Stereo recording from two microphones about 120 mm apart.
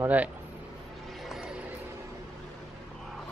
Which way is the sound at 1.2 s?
5° right (ahead or behind).